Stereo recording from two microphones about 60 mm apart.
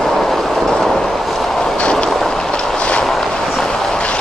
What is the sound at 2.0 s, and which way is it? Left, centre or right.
Vehicle, centre.